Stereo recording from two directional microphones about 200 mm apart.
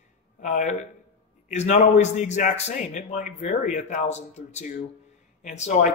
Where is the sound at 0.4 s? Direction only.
35° left (ahead or behind).